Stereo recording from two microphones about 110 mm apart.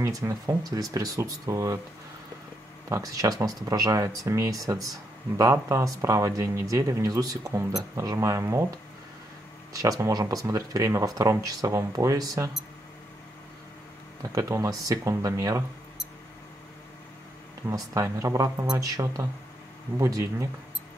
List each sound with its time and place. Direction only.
0.0 s speech: 30° right (ahead or behind)
2.9 s speech: 30° right (ahead or behind)
14.3 s speech: 30° right (ahead or behind)
17.6 s speech: 30° right (ahead or behind)